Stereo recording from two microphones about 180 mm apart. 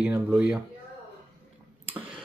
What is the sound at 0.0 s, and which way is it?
Speech, 5° right (ahead or behind).